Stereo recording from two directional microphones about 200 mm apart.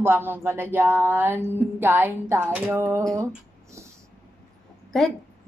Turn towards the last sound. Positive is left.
turn(degrees=0)  # may be behind; listen again after turning